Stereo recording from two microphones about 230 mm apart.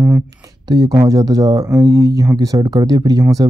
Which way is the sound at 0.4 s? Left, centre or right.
Centre.